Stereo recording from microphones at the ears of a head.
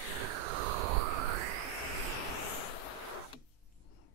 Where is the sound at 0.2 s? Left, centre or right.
Right.